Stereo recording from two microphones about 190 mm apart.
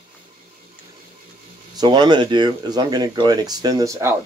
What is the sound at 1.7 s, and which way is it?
Speech, 25° right (ahead or behind).